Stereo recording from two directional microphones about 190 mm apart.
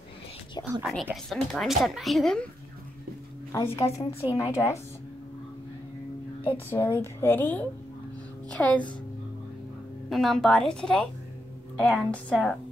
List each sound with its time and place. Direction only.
0.8 s speech: centre (ahead or behind)
3.5 s a woman's voice: 15° left (ahead or behind)
6.5 s a woman's voice: 10° left (ahead or behind)
10.0 s speech: centre (ahead or behind)